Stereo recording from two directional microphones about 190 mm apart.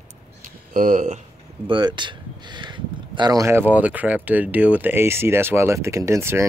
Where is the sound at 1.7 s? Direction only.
25° right (ahead or behind).